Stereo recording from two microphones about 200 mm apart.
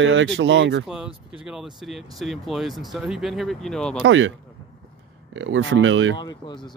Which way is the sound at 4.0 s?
75° right (ahead or behind).